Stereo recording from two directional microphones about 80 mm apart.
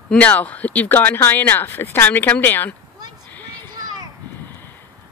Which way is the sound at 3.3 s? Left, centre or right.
Left.